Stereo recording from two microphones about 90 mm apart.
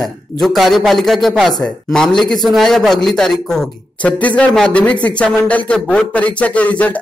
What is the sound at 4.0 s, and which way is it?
A man's voice, 15° left (ahead or behind).